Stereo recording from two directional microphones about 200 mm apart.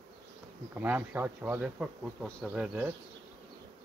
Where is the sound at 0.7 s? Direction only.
10° right (ahead or behind).